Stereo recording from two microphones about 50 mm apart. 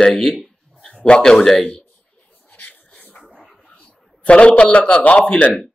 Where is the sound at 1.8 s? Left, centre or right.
Left.